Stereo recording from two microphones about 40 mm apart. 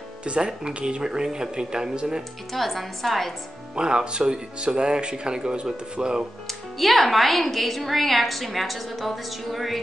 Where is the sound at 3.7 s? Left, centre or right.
Right.